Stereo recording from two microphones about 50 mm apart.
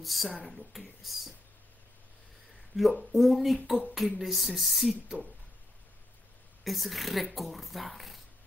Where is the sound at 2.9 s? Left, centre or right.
Centre.